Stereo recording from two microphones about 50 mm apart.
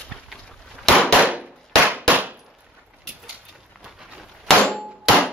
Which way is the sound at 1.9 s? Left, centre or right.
Right.